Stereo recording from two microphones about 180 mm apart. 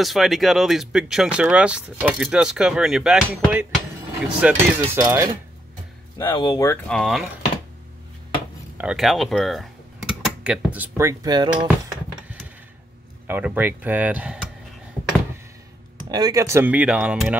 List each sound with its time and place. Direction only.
0.0 s speech: centre (ahead or behind)
6.1 s speech: 25° left (ahead or behind)
6.9 s speech: centre (ahead or behind)
8.7 s speech: 5° right (ahead or behind); by 11.5 s 20° right (ahead or behind)
13.3 s speech: 10° right (ahead or behind)
16.1 s speech: 20° right (ahead or behind); by 17.4 s 5° right (ahead or behind)